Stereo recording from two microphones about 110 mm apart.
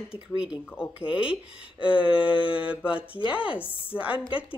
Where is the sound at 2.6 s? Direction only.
10° right (ahead or behind).